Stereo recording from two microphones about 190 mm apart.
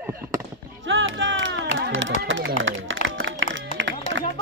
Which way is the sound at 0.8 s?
90° right.